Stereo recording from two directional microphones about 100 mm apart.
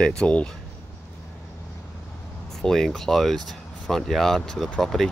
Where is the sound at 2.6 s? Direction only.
5° left (ahead or behind).